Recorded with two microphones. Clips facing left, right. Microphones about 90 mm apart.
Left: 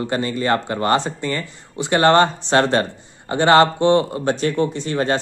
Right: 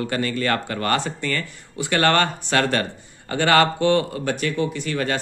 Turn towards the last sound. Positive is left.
turn(degrees=30)  # may be behind; listen again after turning